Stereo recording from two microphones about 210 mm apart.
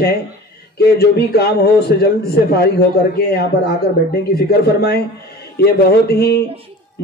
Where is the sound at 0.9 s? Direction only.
50° left (ahead or behind).